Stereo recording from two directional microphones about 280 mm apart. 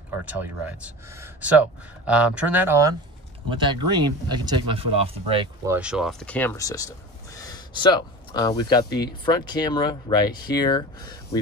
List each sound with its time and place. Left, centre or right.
0.2 s speech: centre
5.8 s speech: centre